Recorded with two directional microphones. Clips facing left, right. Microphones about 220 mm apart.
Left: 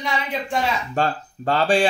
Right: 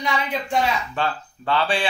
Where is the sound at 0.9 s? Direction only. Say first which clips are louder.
Left 3 dB; 45° left (ahead or behind).